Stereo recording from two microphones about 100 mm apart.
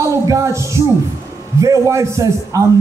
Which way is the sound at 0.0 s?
30° right (ahead or behind).